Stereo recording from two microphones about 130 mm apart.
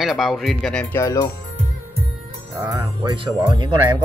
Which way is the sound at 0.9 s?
25° left (ahead or behind).